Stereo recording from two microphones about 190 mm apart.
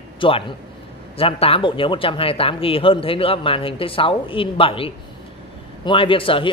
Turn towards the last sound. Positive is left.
turn(degrees=30)  # may be behind; listen again after turning